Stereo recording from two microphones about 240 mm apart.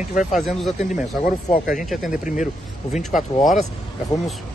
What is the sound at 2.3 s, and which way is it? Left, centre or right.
Speech, left.